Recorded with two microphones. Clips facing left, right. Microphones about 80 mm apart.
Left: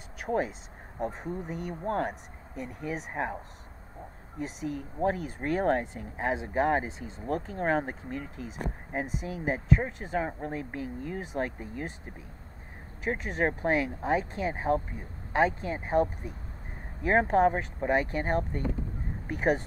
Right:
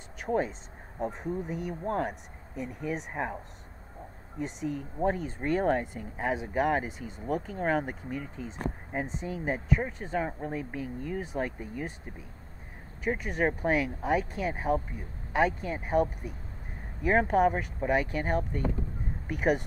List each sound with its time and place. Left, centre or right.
0.3 s speech: centre
4.4 s speech: centre
13.2 s speech: left
17.0 s speech: centre
19.3 s speech: centre